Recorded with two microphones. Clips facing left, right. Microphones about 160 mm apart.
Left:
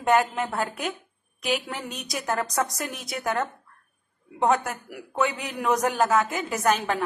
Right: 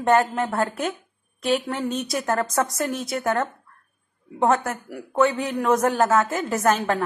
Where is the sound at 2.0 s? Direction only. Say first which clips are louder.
Right 4 dB; centre (ahead or behind).